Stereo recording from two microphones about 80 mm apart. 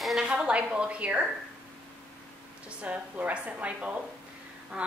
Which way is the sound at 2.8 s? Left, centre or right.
Centre.